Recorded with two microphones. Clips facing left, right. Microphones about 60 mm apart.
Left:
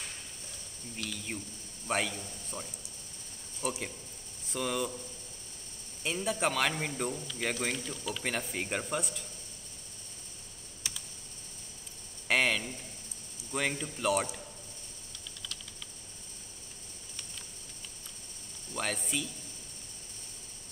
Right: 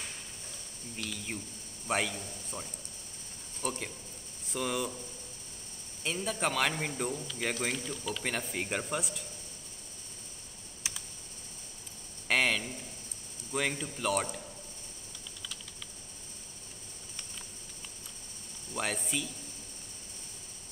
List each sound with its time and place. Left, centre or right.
0.9 s a man's voice: centre
6.0 s a man's voice: centre
10.8 s computer keyboard: centre
12.3 s a sound: centre
13.5 s a man's voice: centre
18.7 s speech: centre